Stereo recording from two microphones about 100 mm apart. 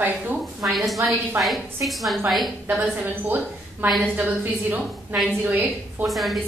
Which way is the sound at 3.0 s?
20° right (ahead or behind).